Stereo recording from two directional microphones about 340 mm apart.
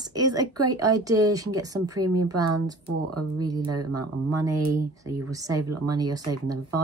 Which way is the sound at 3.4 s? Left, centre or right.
Centre.